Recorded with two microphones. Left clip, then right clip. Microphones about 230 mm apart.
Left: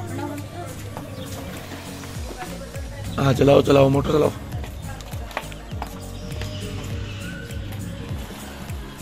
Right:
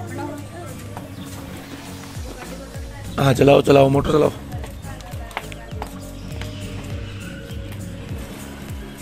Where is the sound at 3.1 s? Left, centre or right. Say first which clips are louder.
Right 2 dB; centre.